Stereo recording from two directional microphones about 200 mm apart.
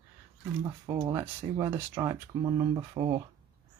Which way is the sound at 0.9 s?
20° right (ahead or behind).